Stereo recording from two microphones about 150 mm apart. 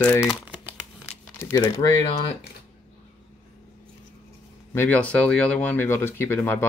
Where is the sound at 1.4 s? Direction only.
20° left (ahead or behind).